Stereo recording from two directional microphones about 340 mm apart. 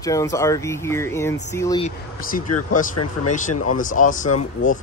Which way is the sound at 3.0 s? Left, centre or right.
Left.